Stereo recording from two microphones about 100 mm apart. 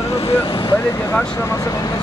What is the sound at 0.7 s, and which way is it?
Speech, 30° left (ahead or behind).